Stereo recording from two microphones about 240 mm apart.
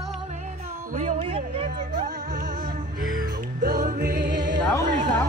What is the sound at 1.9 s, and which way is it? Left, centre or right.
Music, right.